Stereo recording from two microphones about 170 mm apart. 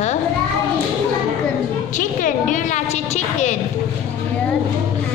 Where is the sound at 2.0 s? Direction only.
50° left (ahead or behind).